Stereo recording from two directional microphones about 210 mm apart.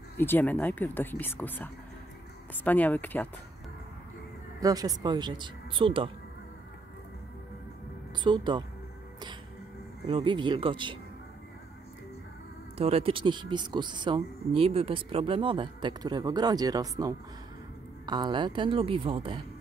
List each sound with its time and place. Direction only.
0.2 s speech: 10° left (ahead or behind)
4.6 s speech: 15° right (ahead or behind)
8.2 s speech: 20° right (ahead or behind)
10.0 s speech: 25° right (ahead or behind)
12.7 s speech: 30° right (ahead or behind)